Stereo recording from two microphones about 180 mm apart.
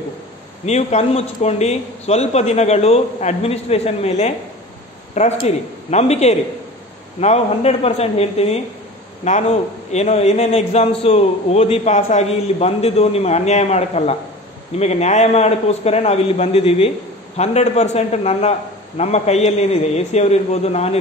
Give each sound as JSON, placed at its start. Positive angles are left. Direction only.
{"t": 0.7, "sound": "a man's voice", "side_deg": 35}